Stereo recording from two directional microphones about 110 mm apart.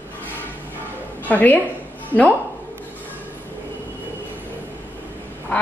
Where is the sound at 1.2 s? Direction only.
15° left (ahead or behind).